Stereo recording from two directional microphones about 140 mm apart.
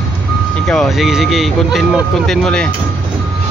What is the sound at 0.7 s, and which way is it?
Speech, centre (ahead or behind).